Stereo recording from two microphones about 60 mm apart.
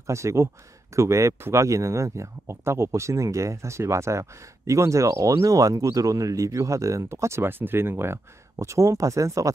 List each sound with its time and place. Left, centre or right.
0.0 s speech: right